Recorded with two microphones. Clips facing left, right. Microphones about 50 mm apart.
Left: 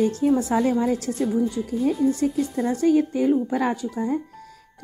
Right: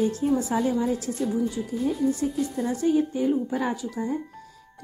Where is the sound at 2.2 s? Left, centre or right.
Left.